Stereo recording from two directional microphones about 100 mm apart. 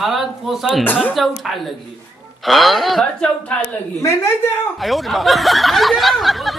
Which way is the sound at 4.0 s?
25° left (ahead or behind).